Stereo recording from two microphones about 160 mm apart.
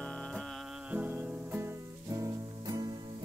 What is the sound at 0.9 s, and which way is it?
Music, 10° right (ahead or behind).